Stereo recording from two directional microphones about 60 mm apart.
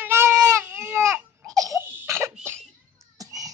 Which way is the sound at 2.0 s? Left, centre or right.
Right.